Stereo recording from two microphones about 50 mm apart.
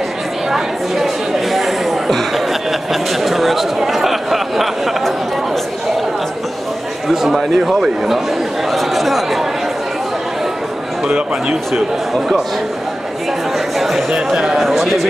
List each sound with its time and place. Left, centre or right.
0.5 s chatter: centre
2.9 s a sound: centre
7.1 s speech: centre
11.1 s speech: right
11.7 s speech: centre
13.7 s a sound: centre
14.1 s speech: centre